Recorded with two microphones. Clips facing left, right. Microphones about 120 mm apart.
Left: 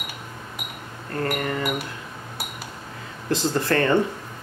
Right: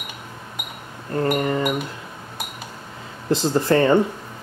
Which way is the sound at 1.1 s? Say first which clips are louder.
Right 5 dB; 20° right (ahead or behind).